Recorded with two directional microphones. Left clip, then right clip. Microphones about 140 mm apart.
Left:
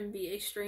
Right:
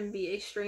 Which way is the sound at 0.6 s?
20° left (ahead or behind).